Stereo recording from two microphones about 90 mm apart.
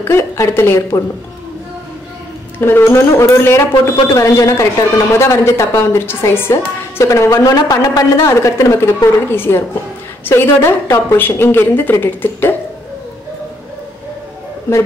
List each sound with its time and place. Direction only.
0.0 s a woman's voice: 30° left (ahead or behind)
2.6 s a woman's voice: 25° left (ahead or behind)